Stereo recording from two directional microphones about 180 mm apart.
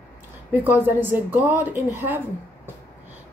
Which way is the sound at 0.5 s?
10° right (ahead or behind).